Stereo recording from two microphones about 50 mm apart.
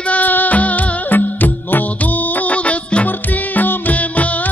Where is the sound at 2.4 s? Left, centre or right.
Left.